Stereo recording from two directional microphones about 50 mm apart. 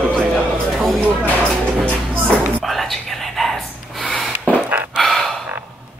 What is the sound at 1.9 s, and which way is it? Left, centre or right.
Music, right.